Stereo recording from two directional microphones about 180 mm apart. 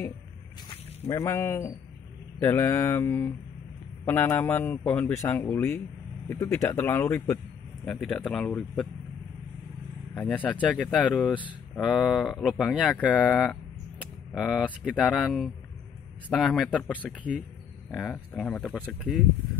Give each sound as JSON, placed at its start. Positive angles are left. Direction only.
{"t": 1.0, "sound": "a man's voice", "side_deg": 15}
{"t": 10.1, "sound": "a man's voice", "side_deg": 10}